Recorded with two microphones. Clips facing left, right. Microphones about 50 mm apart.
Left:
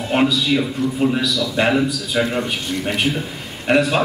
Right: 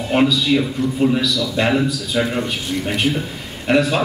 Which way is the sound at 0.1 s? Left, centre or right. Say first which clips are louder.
Right 1 dB; centre.